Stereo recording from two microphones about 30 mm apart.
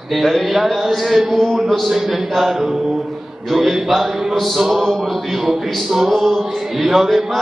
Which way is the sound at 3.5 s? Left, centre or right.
Centre.